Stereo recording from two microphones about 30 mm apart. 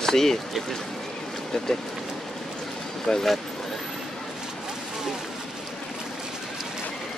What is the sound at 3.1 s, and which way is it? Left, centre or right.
Speech, centre.